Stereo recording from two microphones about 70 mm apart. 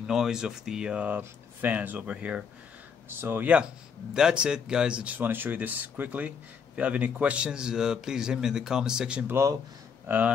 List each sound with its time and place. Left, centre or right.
0.0 s speech: centre
3.1 s speech: right
3.4 s speech: centre
10.0 s speech: right